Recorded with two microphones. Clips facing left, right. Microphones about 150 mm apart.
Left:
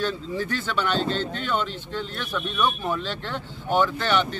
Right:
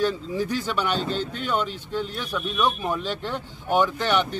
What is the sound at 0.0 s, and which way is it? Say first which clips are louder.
Speech: right 3 dB; 10° right (ahead or behind).